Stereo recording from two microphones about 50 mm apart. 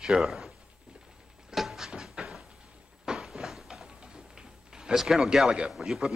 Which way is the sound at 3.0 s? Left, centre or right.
Centre.